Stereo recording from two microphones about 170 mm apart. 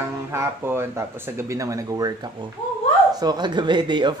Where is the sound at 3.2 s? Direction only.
25° right (ahead or behind).